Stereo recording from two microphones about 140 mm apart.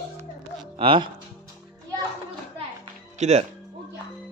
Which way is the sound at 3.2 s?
55° right (ahead or behind).